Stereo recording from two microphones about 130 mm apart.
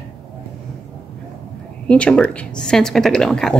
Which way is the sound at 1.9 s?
10° left (ahead or behind).